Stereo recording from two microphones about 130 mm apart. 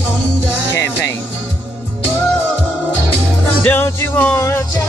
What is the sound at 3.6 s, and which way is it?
Music, 15° left (ahead or behind).